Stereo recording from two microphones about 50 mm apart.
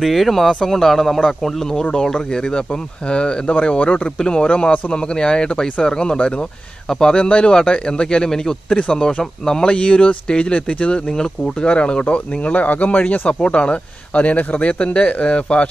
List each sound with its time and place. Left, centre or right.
0.0 s a man's voice: centre; by 13.3 s left
13.3 s speech: left